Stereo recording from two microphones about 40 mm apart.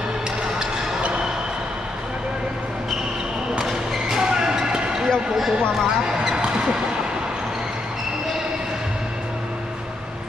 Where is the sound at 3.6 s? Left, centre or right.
Centre.